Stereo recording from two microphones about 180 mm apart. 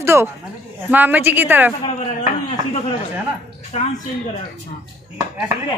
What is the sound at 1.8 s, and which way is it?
Speech, 35° left (ahead or behind).